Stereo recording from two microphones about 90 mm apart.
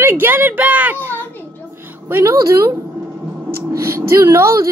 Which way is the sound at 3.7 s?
35° right (ahead or behind).